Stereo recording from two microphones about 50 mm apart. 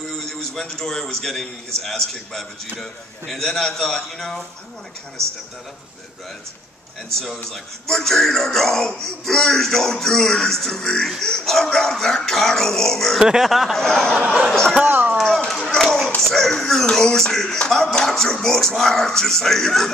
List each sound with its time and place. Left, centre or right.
0.3 s a man's voice: centre
7.4 s speech: centre
13.2 s speech: centre
13.7 s speech: centre
14.9 s a sound: right
15.1 s a sound: centre
16.2 s speech: centre